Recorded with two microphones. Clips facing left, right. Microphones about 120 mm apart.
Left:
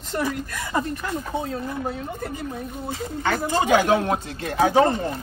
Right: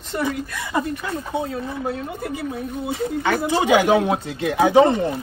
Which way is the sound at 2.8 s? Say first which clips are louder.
Right 4 dB; 15° right (ahead or behind).